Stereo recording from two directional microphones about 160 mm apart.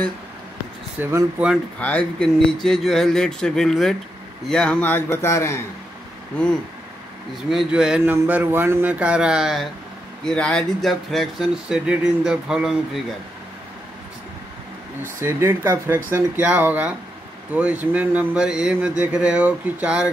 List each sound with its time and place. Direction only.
0.9 s speech: 10° right (ahead or behind)
1.8 s a man's voice: 10° left (ahead or behind)
7.4 s speech: 5° right (ahead or behind)
15.1 s speech: 15° right (ahead or behind)